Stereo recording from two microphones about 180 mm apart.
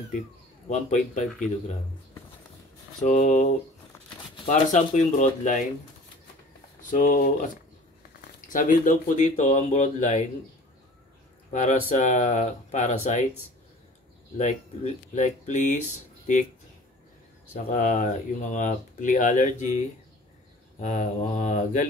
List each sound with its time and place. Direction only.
0.7 s speech: 40° left (ahead or behind)
3.0 s speech: 40° left (ahead or behind)
6.8 s speech: 45° left (ahead or behind)
8.5 s speech: 45° left (ahead or behind)
11.5 s speech: 40° left (ahead or behind)
14.4 s speech: 40° left (ahead or behind)
17.6 s speech: 45° left (ahead or behind)
20.8 s speech: 40° left (ahead or behind)